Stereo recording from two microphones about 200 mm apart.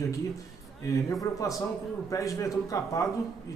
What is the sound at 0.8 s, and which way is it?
Speech, 15° left (ahead or behind).